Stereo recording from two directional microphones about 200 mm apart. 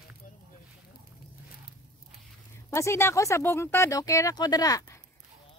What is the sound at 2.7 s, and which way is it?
Speech, 15° left (ahead or behind).